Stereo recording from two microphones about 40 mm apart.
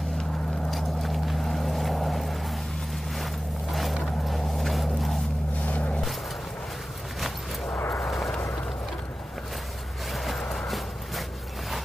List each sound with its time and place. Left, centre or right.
0.7 s vehicle: centre
3.7 s vehicle: centre
5.7 s vehicle: left
8.1 s a sound: centre
10.1 s vehicle: centre